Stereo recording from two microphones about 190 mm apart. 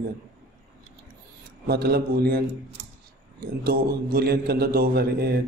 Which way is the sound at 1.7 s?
55° right (ahead or behind).